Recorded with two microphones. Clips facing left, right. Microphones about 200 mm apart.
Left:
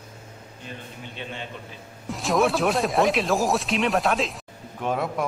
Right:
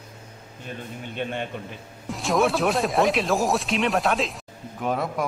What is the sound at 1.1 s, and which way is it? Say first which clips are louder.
Speech: right 7 dB; 55° right (ahead or behind).